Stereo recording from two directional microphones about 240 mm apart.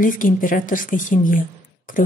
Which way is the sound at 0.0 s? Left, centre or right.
Left.